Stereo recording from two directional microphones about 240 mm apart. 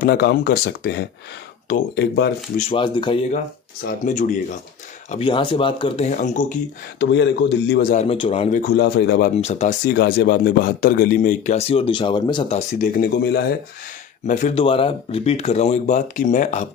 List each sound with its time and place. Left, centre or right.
0.0 s a man's voice: left
2.5 s speech: left
4.0 s a man's voice: left
5.1 s speech: left
7.0 s a man's voice: left
8.6 s a man's voice: left
9.4 s speech: left
9.8 s a man's voice: left
14.2 s speech: left